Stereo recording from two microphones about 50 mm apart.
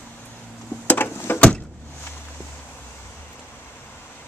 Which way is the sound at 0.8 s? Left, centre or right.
Left.